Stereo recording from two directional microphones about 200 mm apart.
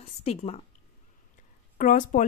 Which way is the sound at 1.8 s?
40° left (ahead or behind).